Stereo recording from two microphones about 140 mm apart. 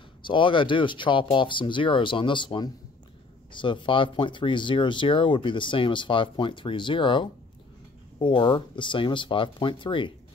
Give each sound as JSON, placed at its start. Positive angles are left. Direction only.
{"t": 0.2, "sound": "speech", "side_deg": 35}